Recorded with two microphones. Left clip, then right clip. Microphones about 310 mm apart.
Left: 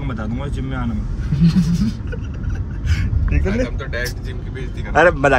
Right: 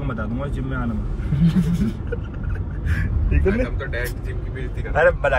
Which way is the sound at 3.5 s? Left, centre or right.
Left.